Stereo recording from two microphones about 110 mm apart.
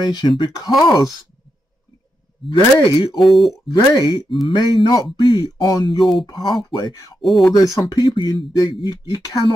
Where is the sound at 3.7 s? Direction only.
40° left (ahead or behind).